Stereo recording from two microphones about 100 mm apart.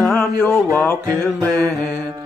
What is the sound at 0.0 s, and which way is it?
Music, 10° left (ahead or behind).